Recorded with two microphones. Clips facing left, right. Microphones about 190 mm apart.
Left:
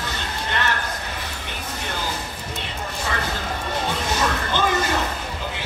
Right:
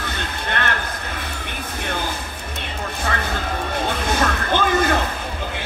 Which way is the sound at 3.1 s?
60° right (ahead or behind).